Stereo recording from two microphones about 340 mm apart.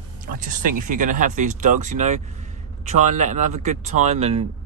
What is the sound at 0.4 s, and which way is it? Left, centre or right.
Speech, right.